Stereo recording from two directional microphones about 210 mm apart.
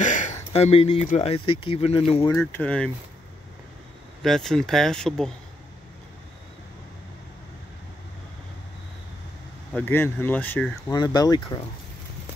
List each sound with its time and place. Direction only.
0.0 s speech: 35° left (ahead or behind)
2.3 s speech: 5° left (ahead or behind)
4.2 s speech: centre (ahead or behind)
9.8 s speech: 10° left (ahead or behind)
11.0 s speech: 20° left (ahead or behind)